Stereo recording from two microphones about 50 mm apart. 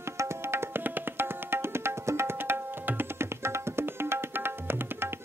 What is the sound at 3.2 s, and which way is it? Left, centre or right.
Tabla, right.